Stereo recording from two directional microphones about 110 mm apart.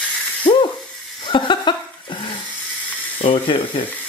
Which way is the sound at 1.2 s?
45° left (ahead or behind).